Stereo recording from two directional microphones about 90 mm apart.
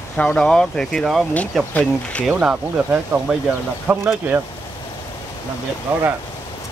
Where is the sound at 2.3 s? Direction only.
15° right (ahead or behind).